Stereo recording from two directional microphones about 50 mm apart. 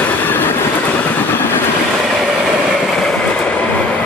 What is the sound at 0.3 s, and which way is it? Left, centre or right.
Train, left.